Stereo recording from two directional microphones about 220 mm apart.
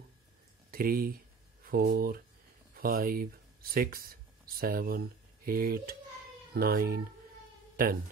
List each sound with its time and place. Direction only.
0.7 s speech: 40° right (ahead or behind)
7.7 s mosquito: 40° right (ahead or behind)